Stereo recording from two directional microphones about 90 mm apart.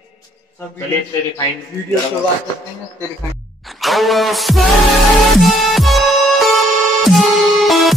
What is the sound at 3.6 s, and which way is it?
Music, centre (ahead or behind).